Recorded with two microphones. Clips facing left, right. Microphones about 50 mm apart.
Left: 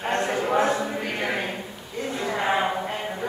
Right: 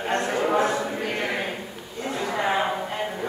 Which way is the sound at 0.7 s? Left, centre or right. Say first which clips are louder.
Even; centre.